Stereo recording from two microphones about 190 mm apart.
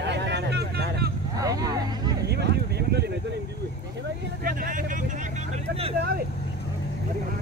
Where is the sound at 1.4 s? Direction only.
20° right (ahead or behind).